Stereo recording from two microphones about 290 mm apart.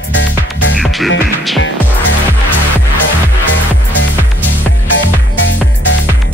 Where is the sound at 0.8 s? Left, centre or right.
Centre.